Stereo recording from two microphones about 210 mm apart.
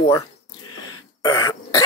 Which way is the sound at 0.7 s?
20° left (ahead or behind).